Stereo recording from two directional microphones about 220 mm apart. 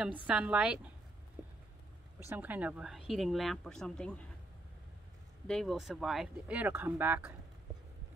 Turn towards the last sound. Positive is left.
turn(degrees=-10)  # may be behind; listen again after turning